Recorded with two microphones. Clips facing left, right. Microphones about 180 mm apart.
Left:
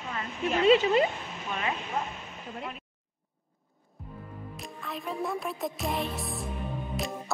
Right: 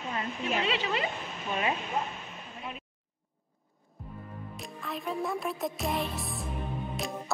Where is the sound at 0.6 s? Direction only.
45° left (ahead or behind).